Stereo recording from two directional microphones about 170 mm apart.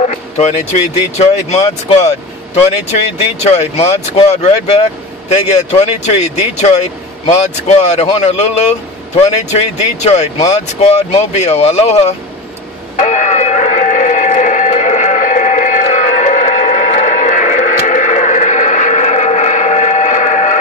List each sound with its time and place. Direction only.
0.0 s speech: 40° left (ahead or behind)
3.4 s speech: 40° left (ahead or behind)
12.9 s a sound: 45° left (ahead or behind)